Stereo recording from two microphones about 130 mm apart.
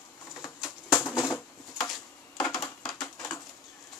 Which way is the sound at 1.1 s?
25° left (ahead or behind).